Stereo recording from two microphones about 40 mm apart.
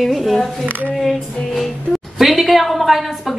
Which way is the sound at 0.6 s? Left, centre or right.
Right.